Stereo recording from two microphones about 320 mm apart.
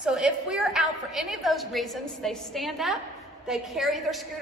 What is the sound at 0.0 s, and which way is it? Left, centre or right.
A woman's voice, centre.